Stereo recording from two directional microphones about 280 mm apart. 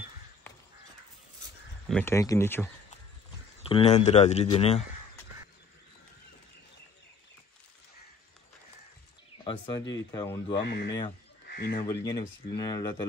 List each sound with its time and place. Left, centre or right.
1.9 s speech: centre
3.6 s speech: left
9.4 s bird: centre
10.1 s speech: centre
10.6 s speech: left
11.4 s crow: left
11.8 s speech: centre